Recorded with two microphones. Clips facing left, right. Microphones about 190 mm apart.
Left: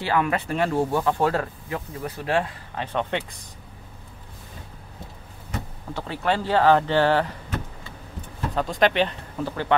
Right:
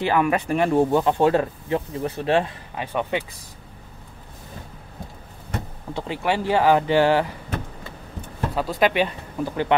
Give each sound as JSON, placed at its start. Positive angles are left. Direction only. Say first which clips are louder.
{"t": 0.0, "sound": "speech", "louder": "right 3 dB", "side_deg": -15}
{"t": 2.7, "sound": "speech", "louder": "right 1 dB", "side_deg": -10}
{"t": 5.9, "sound": "speech", "louder": "right 1 dB", "side_deg": -15}
{"t": 8.5, "sound": "speech", "louder": "even", "side_deg": -5}